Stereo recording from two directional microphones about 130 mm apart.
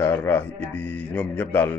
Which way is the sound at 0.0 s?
20° left (ahead or behind).